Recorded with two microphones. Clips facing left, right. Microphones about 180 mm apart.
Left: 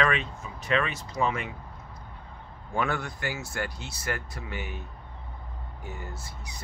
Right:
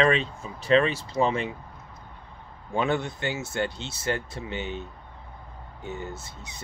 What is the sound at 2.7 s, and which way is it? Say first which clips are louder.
Speech: right 4 dB; 20° right (ahead or behind).